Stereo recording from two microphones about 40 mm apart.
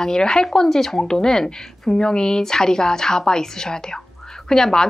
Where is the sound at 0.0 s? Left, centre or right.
Centre.